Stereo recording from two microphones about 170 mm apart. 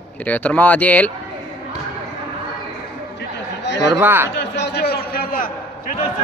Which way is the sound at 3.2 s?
90° left.